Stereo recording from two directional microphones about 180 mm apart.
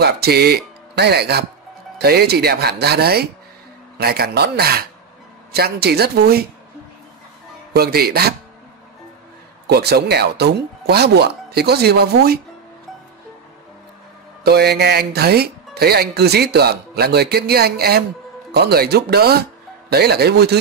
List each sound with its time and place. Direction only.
0.0 s speech: 60° right (ahead or behind)
7.7 s speech: 60° right (ahead or behind)
9.7 s speech: 65° right (ahead or behind)
14.4 s speech: 65° right (ahead or behind)